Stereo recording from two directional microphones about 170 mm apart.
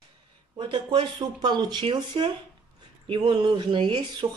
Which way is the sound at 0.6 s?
30° right (ahead or behind).